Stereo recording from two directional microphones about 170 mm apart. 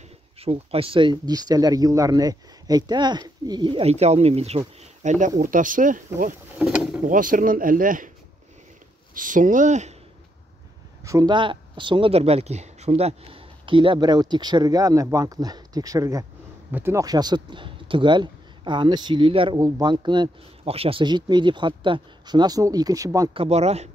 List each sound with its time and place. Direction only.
0.4 s speech: 35° right (ahead or behind)
5.4 s speech: 50° right (ahead or behind)
6.6 s speech: 5° right (ahead or behind)
7.1 s speech: 50° right (ahead or behind)
9.1 s speech: 50° right (ahead or behind)
11.1 s speech: 20° right (ahead or behind)
23.3 s speech: 35° right (ahead or behind)